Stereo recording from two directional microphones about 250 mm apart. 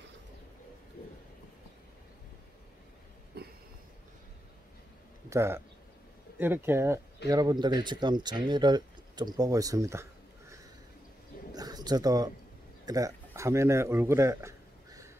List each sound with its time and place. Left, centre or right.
3.3 s a sound: right
5.3 s a man's voice: centre
11.5 s bird: centre
12.8 s speech: centre